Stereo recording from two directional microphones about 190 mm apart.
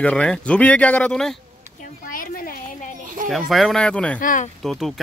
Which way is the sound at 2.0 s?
45° left (ahead or behind).